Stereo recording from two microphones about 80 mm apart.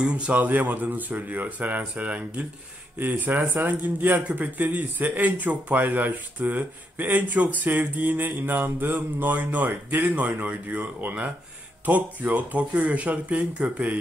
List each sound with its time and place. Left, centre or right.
0.0 s a man's voice: centre